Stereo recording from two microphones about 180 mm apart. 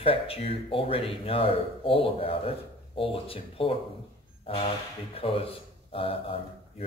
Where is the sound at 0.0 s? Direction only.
30° left (ahead or behind).